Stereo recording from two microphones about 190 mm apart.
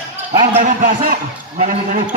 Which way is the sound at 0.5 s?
40° right (ahead or behind).